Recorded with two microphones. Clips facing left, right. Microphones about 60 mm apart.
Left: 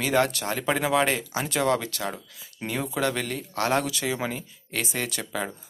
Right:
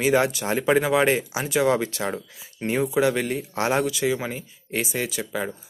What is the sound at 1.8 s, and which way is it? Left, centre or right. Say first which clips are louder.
Speech: right 5 dB; right.